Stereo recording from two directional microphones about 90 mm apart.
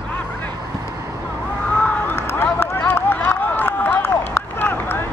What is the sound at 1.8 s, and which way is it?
Run, 25° left (ahead or behind).